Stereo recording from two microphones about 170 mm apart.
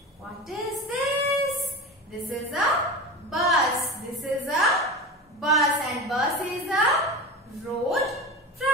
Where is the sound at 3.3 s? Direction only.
Centre (ahead or behind).